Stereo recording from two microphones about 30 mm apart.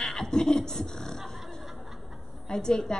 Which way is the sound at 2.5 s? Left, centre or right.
Centre.